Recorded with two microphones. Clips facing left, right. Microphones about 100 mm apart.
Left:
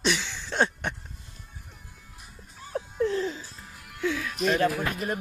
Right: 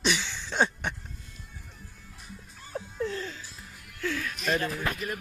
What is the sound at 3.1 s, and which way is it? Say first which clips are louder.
Music: left 7 dB; 20° left (ahead or behind).